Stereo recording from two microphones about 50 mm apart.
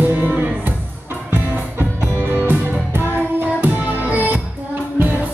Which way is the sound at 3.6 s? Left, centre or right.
Right.